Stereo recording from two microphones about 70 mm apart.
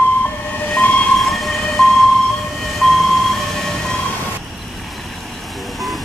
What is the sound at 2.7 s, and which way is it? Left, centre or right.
Vehicle, centre.